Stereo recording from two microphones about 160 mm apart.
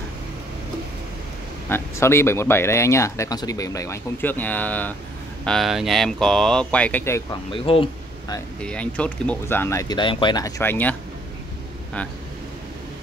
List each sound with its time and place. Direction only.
1.7 s speech: 15° left (ahead or behind)
7.5 s speech: 35° left (ahead or behind)
8.6 s speech: 5° left (ahead or behind)
9.9 s speech: 30° left (ahead or behind); by 11.0 s 10° left (ahead or behind)